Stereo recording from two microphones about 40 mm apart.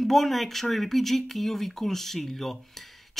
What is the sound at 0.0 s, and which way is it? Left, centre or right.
Speech, centre.